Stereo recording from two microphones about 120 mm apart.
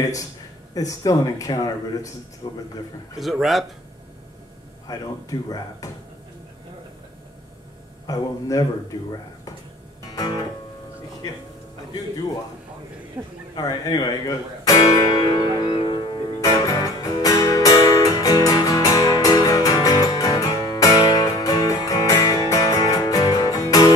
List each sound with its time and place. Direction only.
0.7 s speech: 30° left (ahead or behind)
3.2 s speech: centre (ahead or behind)
4.8 s speech: 30° left (ahead or behind)
8.1 s speech: 30° left (ahead or behind)
10.1 s music: 35° left (ahead or behind)
13.6 s speech: 30° left (ahead or behind)
14.7 s music: 30° left (ahead or behind)